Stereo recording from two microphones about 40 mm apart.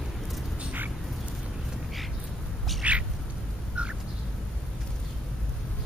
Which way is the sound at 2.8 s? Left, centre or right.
Right.